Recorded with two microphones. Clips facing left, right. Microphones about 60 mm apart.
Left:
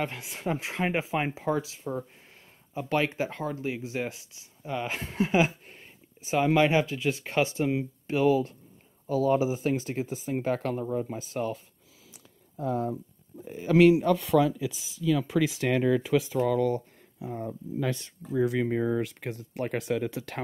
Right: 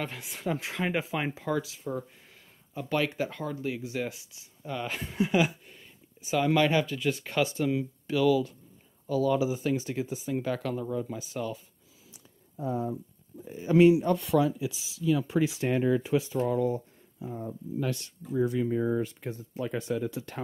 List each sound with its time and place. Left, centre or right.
0.0 s speech: centre
5.7 s a sound: left
6.4 s speech: left
12.5 s speech: left
13.7 s speech: left
15.3 s speech: left
18.3 s speech: left